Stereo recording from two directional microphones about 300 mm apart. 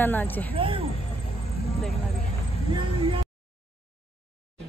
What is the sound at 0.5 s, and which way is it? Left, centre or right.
Speech, centre.